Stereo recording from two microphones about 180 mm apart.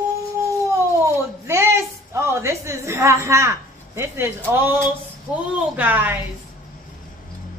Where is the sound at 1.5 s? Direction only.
15° right (ahead or behind).